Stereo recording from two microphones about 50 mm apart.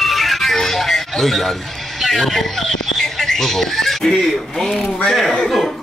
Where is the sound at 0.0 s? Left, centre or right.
Centre.